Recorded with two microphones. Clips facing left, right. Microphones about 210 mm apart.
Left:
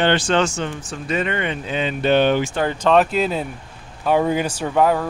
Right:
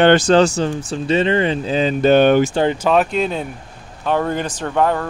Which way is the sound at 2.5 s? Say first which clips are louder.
Right 5 dB; 25° right (ahead or behind).